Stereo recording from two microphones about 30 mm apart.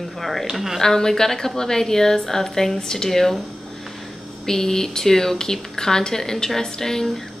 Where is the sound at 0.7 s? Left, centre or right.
Centre.